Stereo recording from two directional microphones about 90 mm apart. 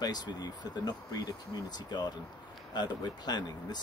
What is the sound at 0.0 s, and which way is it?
Speech, 50° left (ahead or behind).